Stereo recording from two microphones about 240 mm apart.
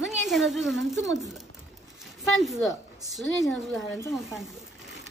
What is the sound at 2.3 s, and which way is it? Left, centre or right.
Speech, centre.